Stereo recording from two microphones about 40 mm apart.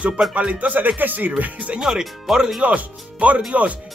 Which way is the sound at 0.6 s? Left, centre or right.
Right.